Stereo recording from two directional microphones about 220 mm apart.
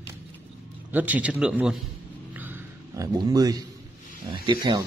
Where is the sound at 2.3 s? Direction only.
10° right (ahead or behind).